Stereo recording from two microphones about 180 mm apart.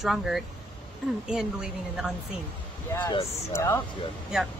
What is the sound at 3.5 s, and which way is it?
Speech, 15° left (ahead or behind).